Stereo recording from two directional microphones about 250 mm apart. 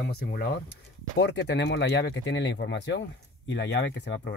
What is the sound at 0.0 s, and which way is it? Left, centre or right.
Speech, left.